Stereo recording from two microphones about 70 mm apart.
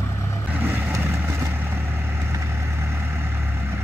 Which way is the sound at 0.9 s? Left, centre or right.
Right.